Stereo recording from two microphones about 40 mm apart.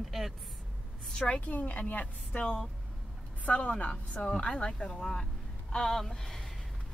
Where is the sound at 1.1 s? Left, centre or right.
Centre.